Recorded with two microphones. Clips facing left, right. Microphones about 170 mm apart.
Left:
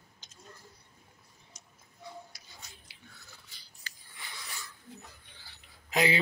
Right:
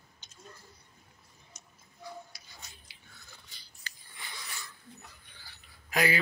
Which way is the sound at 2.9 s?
65° left (ahead or behind).